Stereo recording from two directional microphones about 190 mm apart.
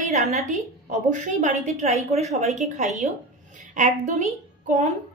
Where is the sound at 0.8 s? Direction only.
40° right (ahead or behind).